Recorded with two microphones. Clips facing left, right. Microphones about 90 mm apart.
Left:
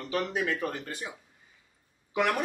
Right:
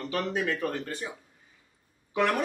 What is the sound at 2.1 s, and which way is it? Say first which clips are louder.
Speech: right 1 dB; 10° left (ahead or behind).